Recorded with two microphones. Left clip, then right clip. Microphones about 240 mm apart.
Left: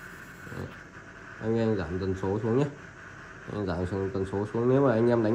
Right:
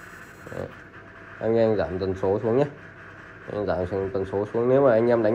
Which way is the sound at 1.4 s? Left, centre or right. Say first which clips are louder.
Right 7 dB; centre.